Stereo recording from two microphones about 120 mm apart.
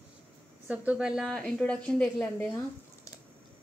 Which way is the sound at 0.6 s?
10° right (ahead or behind).